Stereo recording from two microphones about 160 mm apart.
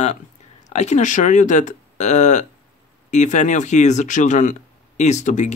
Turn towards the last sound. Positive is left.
turn(degrees=50)  # may be behind; listen again after turning